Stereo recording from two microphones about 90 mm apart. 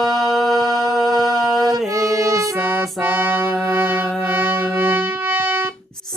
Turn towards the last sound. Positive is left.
turn(degrees=-25)  # may be behind; listen again after turning